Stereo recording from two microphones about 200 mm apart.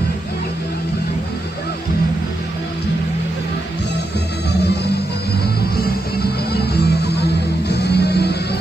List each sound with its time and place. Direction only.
4.5 s music: 55° left (ahead or behind)
5.8 s music: 50° left (ahead or behind)